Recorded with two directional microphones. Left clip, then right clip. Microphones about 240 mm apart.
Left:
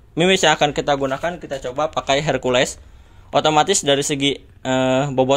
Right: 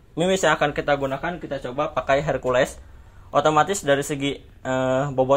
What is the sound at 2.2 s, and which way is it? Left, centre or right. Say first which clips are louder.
Speech: left 3 dB; left.